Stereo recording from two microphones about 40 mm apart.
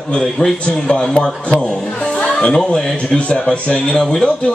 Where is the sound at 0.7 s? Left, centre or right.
Centre.